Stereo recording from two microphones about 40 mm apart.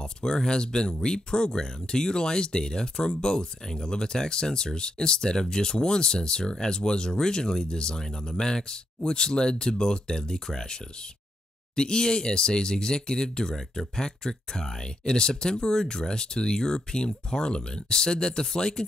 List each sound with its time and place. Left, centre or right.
0.0 s speech: centre